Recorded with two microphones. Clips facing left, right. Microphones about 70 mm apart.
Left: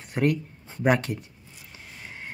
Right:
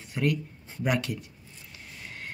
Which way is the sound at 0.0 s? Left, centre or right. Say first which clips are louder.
Left 4 dB; left.